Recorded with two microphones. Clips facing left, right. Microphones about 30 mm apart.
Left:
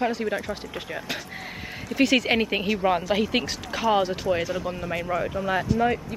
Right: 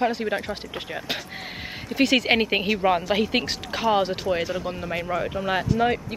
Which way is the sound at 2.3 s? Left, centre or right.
Right.